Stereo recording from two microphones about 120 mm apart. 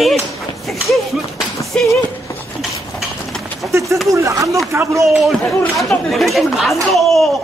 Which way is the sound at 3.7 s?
25° right (ahead or behind).